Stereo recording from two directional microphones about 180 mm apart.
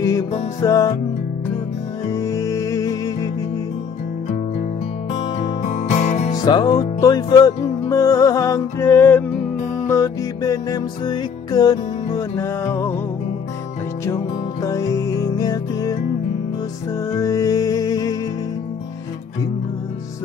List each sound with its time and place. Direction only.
0.6 s music: 20° left (ahead or behind)
2.1 s music: 15° left (ahead or behind)
5.1 s music: 35° left (ahead or behind)
6.4 s music: 25° left (ahead or behind)
14.0 s music: 15° left (ahead or behind)
17.1 s music: 20° left (ahead or behind)